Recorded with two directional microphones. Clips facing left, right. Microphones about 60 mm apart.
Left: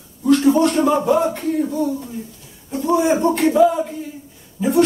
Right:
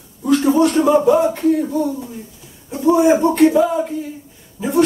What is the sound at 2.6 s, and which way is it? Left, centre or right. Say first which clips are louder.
Speech: right 4 dB; centre.